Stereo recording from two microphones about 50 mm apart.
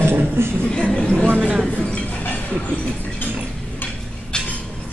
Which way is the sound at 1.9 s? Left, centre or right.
Left.